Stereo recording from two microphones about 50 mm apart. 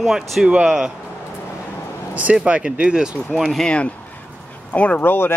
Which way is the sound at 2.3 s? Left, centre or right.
Right.